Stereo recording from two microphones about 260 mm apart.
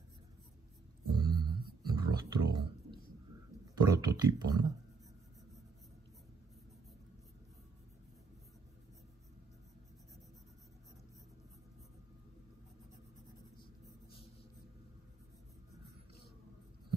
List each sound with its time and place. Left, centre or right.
1.1 s a sound: centre
1.8 s wild animals: centre
3.8 s speech: centre